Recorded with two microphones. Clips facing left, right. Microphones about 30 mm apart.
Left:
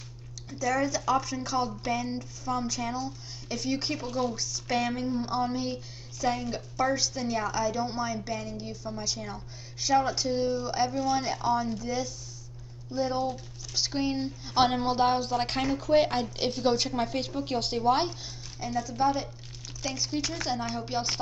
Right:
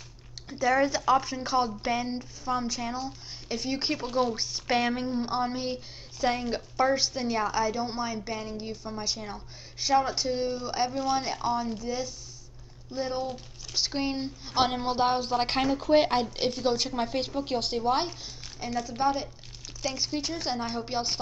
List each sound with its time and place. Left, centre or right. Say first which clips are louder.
0.5 s a woman's voice: right 3 dB; right
3.9 s a woman's voice: right 3 dB; right
6.2 s a woman's voice: right 2 dB; right; by 14.5 s centre
14.5 s a woman's voice: left 2 dB; centre; by 16.3 s right
16.3 s a woman's voice: even; centre
18.9 s a woman's voice: left 1 dB; centre
20.2 s a woman's voice: even; right